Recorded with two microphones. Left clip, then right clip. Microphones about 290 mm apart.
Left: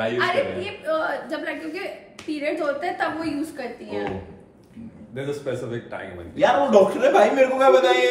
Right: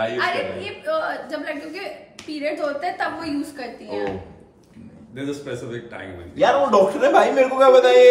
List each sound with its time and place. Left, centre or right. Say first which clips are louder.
0.0 s a woman's voice: even; centre
6.3 s a man's voice: right 1 dB; centre